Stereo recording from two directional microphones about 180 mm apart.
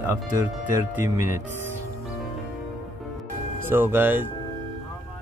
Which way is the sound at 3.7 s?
10° right (ahead or behind).